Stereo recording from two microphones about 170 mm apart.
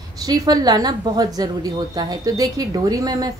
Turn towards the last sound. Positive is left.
turn(degrees=-20)  # may be behind; listen again after turning